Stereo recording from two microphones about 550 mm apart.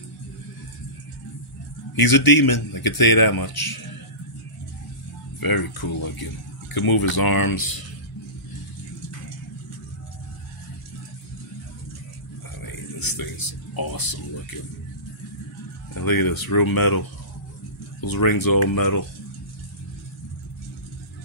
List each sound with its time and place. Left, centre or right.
2.0 s speech: left
5.4 s speech: left
12.6 s a sound: left
15.9 s speech: left
18.0 s speech: left